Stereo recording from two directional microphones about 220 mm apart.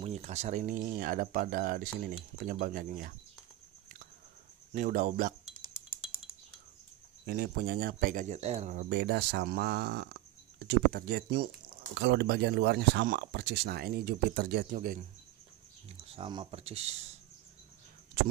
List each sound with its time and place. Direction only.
0.0 s speech: 30° right (ahead or behind)
4.7 s speech: 35° right (ahead or behind)
7.2 s speech: 45° right (ahead or behind)
16.1 s speech: 25° right (ahead or behind)